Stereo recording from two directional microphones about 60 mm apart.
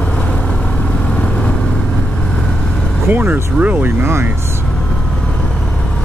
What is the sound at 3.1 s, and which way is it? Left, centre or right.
Speech, right.